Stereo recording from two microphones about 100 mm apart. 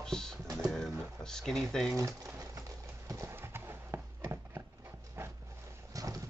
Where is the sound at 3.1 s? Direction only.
30° right (ahead or behind).